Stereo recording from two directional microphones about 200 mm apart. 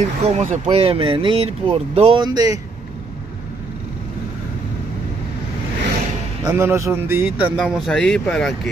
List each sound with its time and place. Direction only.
0.2 s speech: 35° right (ahead or behind); by 2.6 s 20° right (ahead or behind)
6.4 s speech: 15° right (ahead or behind); by 8.5 s 5° left (ahead or behind)